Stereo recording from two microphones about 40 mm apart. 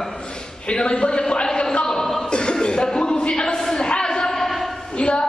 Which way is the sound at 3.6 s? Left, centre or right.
Centre.